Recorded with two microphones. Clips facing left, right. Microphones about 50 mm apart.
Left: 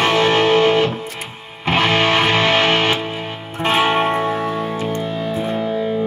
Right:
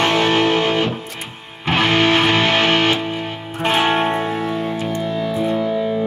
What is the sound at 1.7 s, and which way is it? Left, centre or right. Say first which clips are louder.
Music: even; left.